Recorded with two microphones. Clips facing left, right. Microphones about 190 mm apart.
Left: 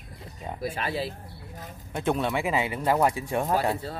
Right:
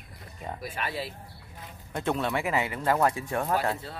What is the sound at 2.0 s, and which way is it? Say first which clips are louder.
Speech: left 2 dB; 15° left (ahead or behind).